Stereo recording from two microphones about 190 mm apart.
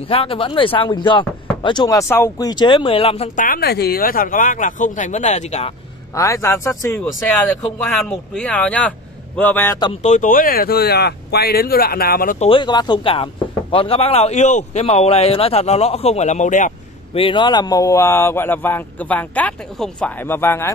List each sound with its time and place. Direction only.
0.1 s speech: 30° left (ahead or behind)
3.3 s speech: 50° left (ahead or behind)
6.1 s a man's voice: 15° left (ahead or behind)
8.4 s a man's voice: 5° left (ahead or behind)
10.0 s speech: 45° left (ahead or behind)
12.4 s speech: 25° left (ahead or behind)
17.2 s a man's voice: 25° left (ahead or behind)